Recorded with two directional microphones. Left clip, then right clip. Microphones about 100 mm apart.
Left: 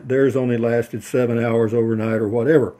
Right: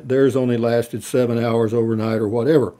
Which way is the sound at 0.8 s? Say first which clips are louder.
Right 1 dB; 20° right (ahead or behind).